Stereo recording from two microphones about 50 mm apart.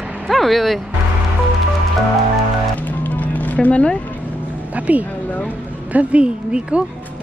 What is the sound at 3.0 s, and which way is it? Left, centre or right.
Music, left.